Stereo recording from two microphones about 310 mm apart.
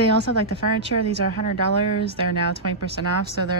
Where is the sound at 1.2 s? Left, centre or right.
Right.